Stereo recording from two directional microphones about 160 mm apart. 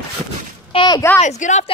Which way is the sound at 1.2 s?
50° left (ahead or behind).